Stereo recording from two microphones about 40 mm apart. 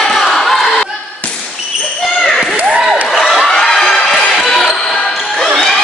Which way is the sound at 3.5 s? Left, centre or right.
Centre.